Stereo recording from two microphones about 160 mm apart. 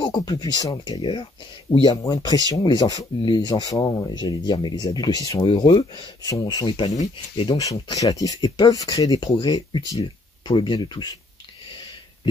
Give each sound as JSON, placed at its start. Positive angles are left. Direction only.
{"t": 0.0, "sound": "speech", "side_deg": 25}
{"t": 7.5, "sound": "speech", "side_deg": 20}